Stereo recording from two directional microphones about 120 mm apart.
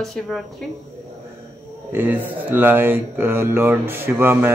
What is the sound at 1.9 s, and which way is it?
Speech, 15° right (ahead or behind).